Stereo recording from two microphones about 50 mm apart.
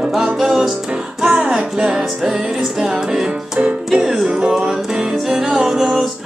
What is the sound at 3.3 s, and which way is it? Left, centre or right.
Music, right.